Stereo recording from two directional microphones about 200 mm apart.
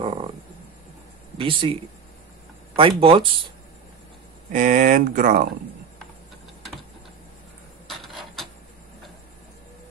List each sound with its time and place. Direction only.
0.0 s frog: 25° right (ahead or behind)
1.4 s speech: 25° right (ahead or behind)
4.5 s speech: 40° right (ahead or behind)
7.9 s a sound: centre (ahead or behind)